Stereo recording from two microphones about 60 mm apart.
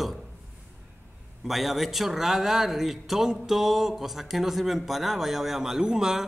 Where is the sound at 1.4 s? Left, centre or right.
Centre.